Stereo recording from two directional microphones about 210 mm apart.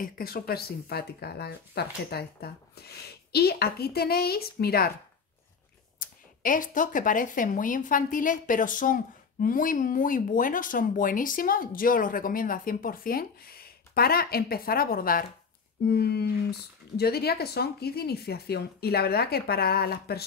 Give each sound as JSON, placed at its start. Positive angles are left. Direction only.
{"t": 0.0, "sound": "speech", "side_deg": 45}
{"t": 5.9, "sound": "speech", "side_deg": 40}